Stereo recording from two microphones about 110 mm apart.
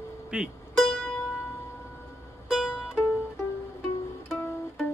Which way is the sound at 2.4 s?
5° right (ahead or behind).